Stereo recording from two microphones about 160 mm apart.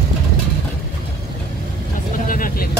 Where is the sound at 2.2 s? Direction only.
60° left (ahead or behind).